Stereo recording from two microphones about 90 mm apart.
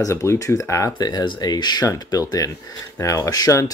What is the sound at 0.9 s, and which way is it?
Speech, 50° left (ahead or behind).